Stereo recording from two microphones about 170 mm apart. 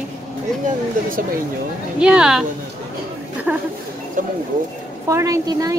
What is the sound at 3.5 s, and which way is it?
Speech, 10° right (ahead or behind).